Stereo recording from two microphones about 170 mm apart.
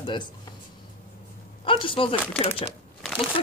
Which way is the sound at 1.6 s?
30° left (ahead or behind).